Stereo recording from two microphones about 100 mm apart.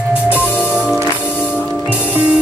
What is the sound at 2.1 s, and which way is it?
Music, 15° right (ahead or behind).